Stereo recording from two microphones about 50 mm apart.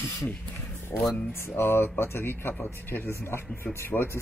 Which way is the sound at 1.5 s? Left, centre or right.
Left.